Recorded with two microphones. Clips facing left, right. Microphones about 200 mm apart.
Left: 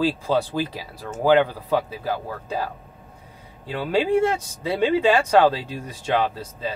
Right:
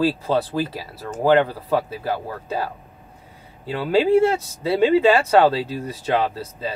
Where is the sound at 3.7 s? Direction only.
5° right (ahead or behind).